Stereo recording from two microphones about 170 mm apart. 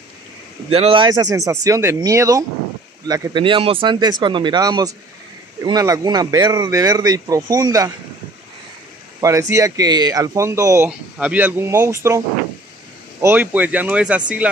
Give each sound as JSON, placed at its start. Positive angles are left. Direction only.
{"t": 0.7, "sound": "speech", "side_deg": -35}
{"t": 9.2, "sound": "speech", "side_deg": -20}
{"t": 13.2, "sound": "speech", "side_deg": -10}